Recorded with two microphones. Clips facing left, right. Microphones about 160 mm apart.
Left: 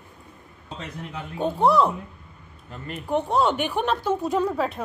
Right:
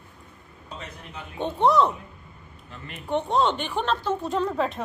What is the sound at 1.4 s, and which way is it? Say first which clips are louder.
Bell: left 1 dB; 5° left (ahead or behind).